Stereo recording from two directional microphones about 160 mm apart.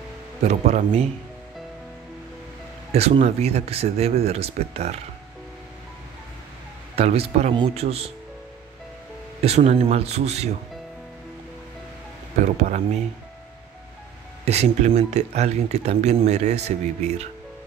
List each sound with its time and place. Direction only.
0.4 s speech: 45° right (ahead or behind)
2.9 s speech: 40° right (ahead or behind)
7.0 s speech: 40° right (ahead or behind)
9.4 s speech: 45° right (ahead or behind)
12.4 s speech: 50° right (ahead or behind)
14.4 s speech: 45° right (ahead or behind)